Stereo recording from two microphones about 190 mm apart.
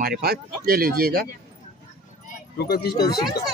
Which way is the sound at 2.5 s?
55° left (ahead or behind).